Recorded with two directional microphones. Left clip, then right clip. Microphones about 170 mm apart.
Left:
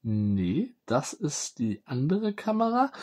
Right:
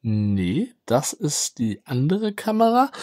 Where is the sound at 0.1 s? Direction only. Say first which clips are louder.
Right 4 dB; 50° right (ahead or behind).